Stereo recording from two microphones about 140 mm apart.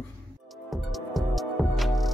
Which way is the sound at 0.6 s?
Centre (ahead or behind).